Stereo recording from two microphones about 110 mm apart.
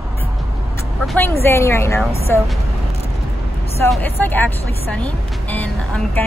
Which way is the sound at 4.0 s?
15° left (ahead or behind).